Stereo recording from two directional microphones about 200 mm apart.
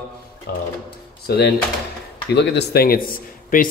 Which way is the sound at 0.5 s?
50° left (ahead or behind).